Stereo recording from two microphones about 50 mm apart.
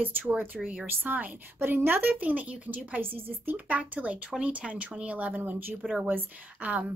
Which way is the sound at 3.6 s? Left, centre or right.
Right.